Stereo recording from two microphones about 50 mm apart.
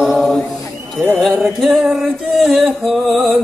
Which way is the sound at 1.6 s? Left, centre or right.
Centre.